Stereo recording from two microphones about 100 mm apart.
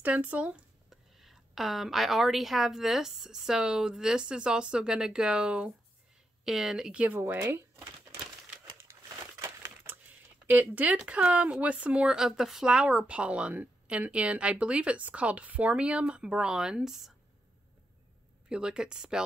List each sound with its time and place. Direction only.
0.0 s speech: 15° right (ahead or behind)
8.9 s crumpling: 25° right (ahead or behind)
9.9 s typing: 20° right (ahead or behind)
10.4 s speech: 20° right (ahead or behind)
18.5 s speech: 10° right (ahead or behind)